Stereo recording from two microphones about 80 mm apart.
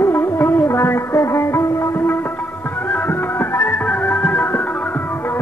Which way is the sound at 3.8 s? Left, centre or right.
Centre.